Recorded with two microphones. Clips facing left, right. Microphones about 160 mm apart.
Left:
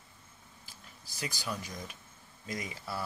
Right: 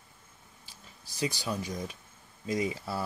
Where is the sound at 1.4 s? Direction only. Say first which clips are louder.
Right 5 dB; 25° right (ahead or behind).